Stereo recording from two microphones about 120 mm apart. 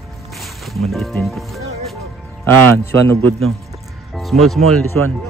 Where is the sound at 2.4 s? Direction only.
20° left (ahead or behind).